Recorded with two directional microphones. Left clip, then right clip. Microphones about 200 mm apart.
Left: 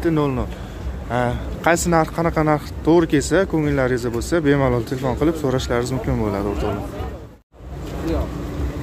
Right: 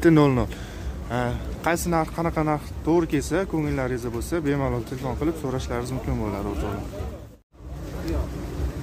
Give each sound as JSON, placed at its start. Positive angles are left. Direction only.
{"t": 0.0, "sound": "a man's voice", "side_deg": -35}
{"t": 1.1, "sound": "speech", "side_deg": 0}